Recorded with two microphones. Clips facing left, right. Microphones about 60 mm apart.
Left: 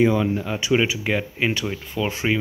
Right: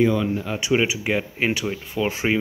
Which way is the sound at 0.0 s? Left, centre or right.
Centre.